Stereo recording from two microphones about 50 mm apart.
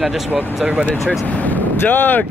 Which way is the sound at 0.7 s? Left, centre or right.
Right.